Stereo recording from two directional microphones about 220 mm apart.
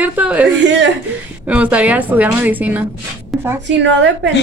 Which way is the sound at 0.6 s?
50° right (ahead or behind).